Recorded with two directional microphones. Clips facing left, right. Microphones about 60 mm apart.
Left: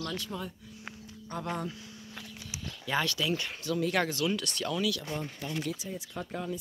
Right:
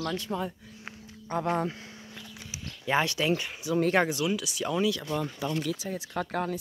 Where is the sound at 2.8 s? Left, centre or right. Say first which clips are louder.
Right 4 dB; right.